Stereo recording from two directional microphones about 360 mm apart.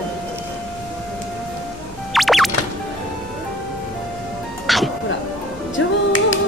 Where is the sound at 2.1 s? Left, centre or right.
Centre.